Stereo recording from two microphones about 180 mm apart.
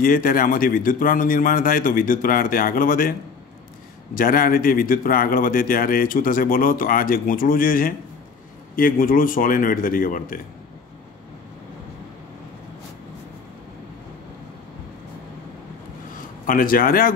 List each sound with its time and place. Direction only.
0.0 s a man's voice: 50° left (ahead or behind)
16.4 s a man's voice: 50° left (ahead or behind)